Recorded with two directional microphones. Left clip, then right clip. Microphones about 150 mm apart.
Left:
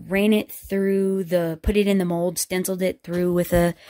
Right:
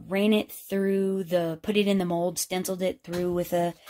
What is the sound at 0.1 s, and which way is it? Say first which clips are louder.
Speech: left 4 dB; 40° left (ahead or behind).